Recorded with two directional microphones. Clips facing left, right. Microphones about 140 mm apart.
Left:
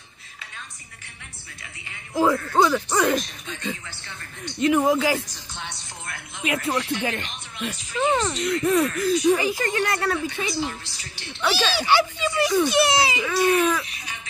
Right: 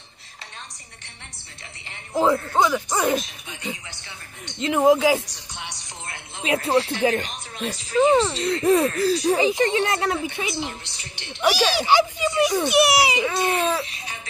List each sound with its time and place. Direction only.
1.9 s a woman's voice: 25° right (ahead or behind)
6.0 s speech: 25° right (ahead or behind)
9.4 s a woman's voice: 20° right (ahead or behind)